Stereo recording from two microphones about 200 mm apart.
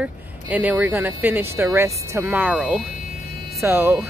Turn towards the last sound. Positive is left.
turn(degrees=-10)  # may be behind; listen again after turning